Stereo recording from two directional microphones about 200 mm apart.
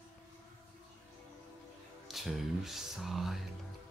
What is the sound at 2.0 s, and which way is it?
Speech, centre (ahead or behind).